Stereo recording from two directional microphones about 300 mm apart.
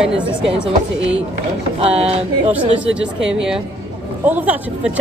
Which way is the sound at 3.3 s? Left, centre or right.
Centre.